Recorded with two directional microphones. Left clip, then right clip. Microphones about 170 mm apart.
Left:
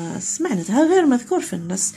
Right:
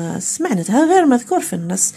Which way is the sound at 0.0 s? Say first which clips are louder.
Right 3 dB; 30° right (ahead or behind).